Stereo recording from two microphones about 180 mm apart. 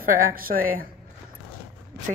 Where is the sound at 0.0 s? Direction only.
50° right (ahead or behind).